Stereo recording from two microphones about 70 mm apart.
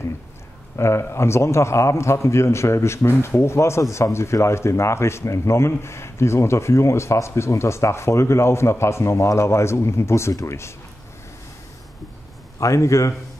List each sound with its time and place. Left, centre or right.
0.7 s a man's voice: left
12.5 s a man's voice: left